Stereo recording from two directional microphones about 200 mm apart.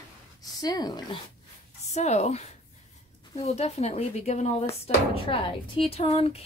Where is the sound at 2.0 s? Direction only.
35° left (ahead or behind).